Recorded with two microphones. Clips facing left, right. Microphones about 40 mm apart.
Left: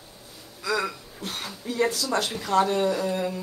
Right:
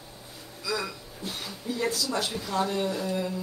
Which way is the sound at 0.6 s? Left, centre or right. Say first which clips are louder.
Left 5 dB; left.